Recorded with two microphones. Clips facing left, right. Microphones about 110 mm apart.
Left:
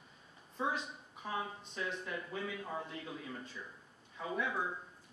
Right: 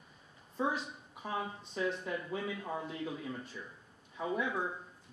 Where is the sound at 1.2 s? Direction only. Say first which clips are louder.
Right 2 dB; 20° right (ahead or behind).